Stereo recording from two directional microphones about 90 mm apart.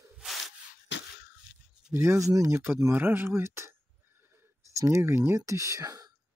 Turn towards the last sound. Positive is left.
turn(degrees=-40)  # may be behind; listen again after turning